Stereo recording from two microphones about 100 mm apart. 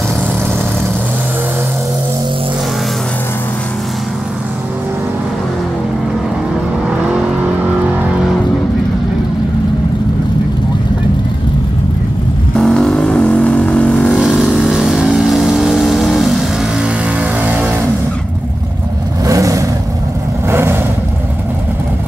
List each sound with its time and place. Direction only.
12.5 s vehicle: 5° left (ahead or behind)
14.2 s vehicle: centre (ahead or behind)
17.2 s music: 15° right (ahead or behind)
19.2 s vehicle: 35° right (ahead or behind)
20.4 s vehicle: 25° right (ahead or behind)